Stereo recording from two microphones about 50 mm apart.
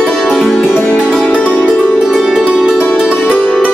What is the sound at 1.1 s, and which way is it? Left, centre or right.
Music, centre.